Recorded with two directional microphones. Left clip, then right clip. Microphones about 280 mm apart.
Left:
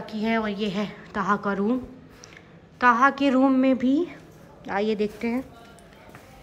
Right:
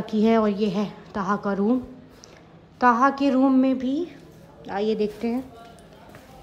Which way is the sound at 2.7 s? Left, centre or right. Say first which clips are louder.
Even; centre.